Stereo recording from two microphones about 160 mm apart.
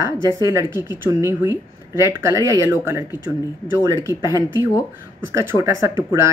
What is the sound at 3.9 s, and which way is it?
Speech, 20° right (ahead or behind).